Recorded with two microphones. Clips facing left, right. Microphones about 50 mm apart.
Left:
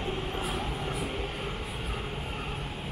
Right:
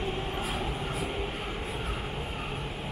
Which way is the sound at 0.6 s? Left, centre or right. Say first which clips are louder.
Right 1 dB; centre.